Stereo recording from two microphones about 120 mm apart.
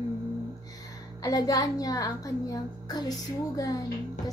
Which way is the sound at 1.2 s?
30° left (ahead or behind).